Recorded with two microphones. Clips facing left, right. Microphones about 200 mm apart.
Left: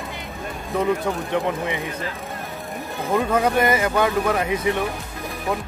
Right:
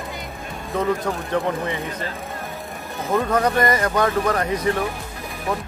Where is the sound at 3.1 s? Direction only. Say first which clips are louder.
Even; 10° left (ahead or behind).